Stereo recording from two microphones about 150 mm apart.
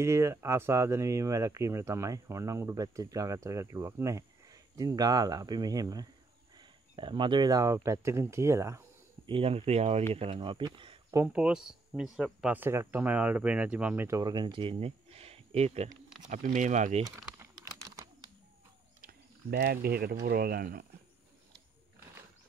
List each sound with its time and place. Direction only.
0.0 s speech: 20° right (ahead or behind)
9.2 s speech: 35° right (ahead or behind)
11.2 s speech: 5° right (ahead or behind); by 17.0 s 55° right (ahead or behind)
17.4 s typing: 25° right (ahead or behind)
18.9 s speech: 85° right